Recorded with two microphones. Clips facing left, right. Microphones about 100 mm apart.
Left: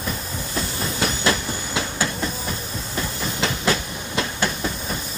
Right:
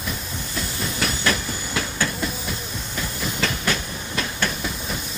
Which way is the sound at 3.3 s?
25° left (ahead or behind).